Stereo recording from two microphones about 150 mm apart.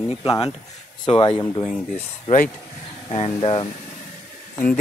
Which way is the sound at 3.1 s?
40° left (ahead or behind).